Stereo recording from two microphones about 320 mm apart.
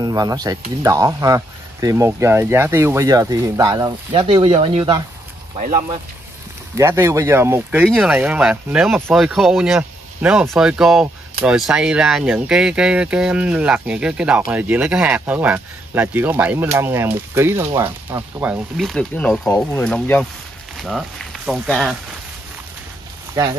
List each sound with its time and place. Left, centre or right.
0.0 s speech: centre